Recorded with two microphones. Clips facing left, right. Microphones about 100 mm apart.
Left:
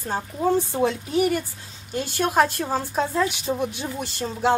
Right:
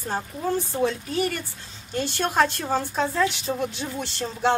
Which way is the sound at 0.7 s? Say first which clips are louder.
Left 3 dB; 15° left (ahead or behind).